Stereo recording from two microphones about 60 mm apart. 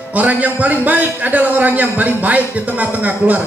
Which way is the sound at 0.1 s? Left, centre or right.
Right.